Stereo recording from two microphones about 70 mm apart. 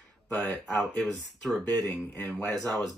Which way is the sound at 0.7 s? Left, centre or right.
Centre.